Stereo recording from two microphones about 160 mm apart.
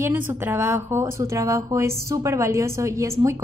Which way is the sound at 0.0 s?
10° right (ahead or behind).